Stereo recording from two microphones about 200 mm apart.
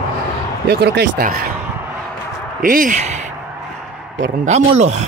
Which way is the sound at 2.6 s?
40° right (ahead or behind).